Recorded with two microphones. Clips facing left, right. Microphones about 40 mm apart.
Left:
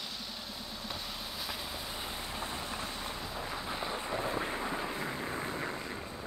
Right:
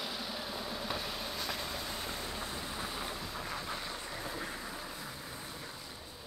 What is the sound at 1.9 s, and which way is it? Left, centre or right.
Vehicle, centre.